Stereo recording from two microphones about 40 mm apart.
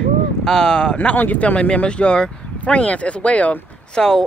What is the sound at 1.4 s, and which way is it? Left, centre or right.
Speech, left.